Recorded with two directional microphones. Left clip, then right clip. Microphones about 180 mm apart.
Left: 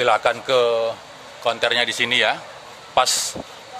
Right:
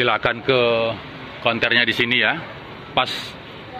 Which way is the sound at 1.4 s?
25° left (ahead or behind).